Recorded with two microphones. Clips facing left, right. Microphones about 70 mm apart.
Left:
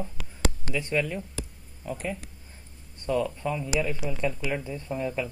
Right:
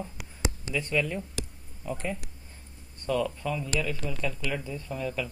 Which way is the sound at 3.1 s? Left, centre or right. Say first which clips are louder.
Left 1 dB; centre.